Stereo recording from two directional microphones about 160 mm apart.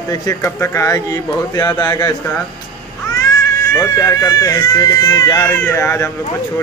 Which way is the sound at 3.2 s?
20° left (ahead or behind).